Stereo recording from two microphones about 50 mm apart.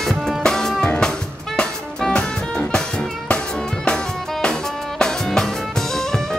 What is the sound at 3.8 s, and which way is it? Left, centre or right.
Music, centre.